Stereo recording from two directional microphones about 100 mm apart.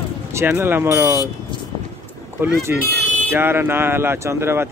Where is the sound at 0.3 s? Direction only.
25° right (ahead or behind).